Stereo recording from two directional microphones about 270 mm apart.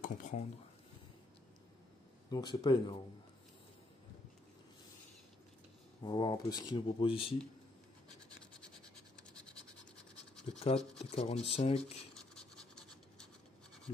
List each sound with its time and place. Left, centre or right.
0.0 s speech: left
2.3 s speech: centre
6.0 s speech: centre
8.4 s scratch: centre
10.5 s speech: centre
12.1 s scratch: centre